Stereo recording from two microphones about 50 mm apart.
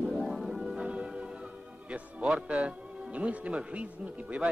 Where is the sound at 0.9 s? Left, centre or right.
Right.